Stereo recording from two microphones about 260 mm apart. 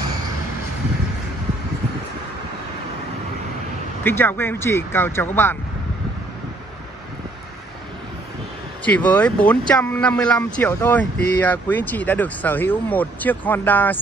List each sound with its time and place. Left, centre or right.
4.0 s speech: centre
8.8 s speech: centre